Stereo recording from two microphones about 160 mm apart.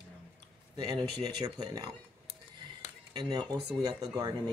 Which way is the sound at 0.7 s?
25° right (ahead or behind).